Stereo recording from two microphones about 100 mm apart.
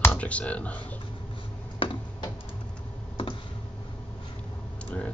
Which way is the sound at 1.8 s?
55° left (ahead or behind).